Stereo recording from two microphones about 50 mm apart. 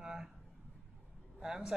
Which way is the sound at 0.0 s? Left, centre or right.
Centre.